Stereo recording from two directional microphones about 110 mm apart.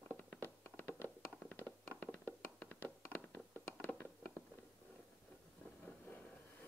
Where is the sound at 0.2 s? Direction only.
15° left (ahead or behind).